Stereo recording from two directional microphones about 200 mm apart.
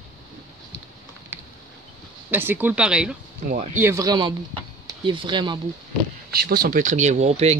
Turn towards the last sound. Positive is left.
turn(degrees=-35)  # may be behind; listen again after turning